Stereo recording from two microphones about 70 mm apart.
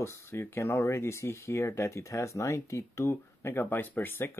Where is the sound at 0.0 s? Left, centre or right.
Left.